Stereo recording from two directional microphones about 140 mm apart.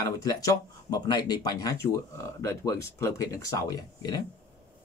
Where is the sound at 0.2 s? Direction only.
25° left (ahead or behind).